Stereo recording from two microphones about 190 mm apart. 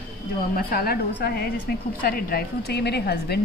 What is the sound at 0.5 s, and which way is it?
A woman's voice, 50° left (ahead or behind).